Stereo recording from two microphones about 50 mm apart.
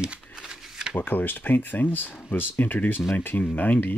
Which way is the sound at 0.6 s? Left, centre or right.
Centre.